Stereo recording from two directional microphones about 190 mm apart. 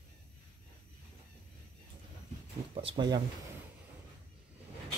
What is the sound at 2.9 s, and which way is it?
Speech, 20° right (ahead or behind).